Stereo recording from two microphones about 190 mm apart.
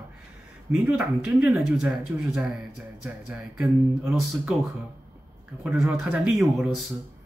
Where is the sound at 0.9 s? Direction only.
10° right (ahead or behind).